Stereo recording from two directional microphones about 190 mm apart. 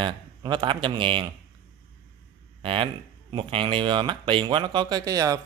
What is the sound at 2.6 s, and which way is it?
Speech, 30° right (ahead or behind).